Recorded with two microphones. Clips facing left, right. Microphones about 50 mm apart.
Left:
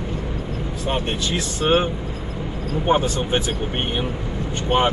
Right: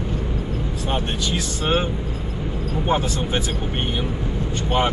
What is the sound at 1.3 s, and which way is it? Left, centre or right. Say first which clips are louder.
Speech: left 4 dB; left.